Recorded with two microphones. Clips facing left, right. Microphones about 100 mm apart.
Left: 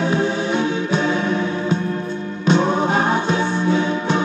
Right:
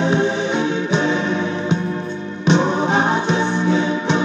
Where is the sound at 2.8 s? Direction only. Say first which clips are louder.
Right 1 dB; 20° right (ahead or behind).